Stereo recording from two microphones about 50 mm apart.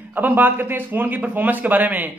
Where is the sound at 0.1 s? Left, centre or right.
Right.